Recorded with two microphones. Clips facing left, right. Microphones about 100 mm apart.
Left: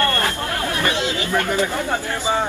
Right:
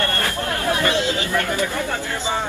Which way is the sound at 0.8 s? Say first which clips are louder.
Right 1 dB; 20° left (ahead or behind).